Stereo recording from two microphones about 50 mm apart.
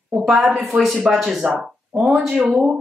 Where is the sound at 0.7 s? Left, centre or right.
Right.